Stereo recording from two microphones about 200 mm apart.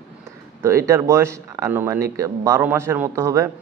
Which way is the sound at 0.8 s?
15° right (ahead or behind).